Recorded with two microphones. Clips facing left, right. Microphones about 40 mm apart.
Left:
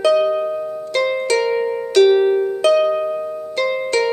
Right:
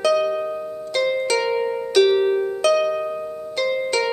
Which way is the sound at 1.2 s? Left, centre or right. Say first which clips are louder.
Left 3 dB; centre.